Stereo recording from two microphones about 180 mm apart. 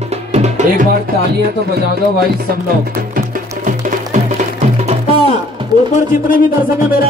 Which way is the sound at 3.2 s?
45° right (ahead or behind).